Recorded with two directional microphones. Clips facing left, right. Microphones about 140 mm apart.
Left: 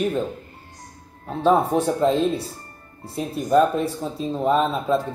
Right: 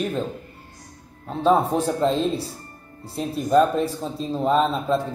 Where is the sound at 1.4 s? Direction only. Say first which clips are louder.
Left 1 dB; centre (ahead or behind).